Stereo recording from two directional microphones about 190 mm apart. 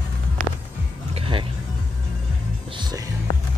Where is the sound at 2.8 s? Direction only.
20° right (ahead or behind).